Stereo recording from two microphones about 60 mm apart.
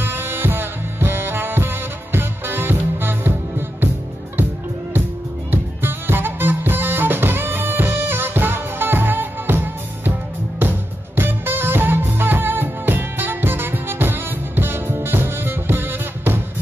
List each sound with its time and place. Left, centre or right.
0.0 s music: right
5.5 s music: right